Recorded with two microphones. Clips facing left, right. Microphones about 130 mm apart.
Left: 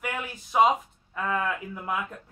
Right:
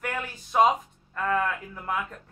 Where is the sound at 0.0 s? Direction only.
10° left (ahead or behind).